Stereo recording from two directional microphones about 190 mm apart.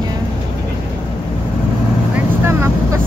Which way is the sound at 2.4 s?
15° right (ahead or behind).